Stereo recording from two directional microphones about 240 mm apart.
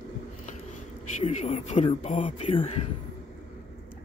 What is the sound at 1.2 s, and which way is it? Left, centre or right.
Speech, left.